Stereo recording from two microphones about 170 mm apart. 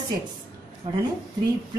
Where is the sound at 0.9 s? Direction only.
25° right (ahead or behind).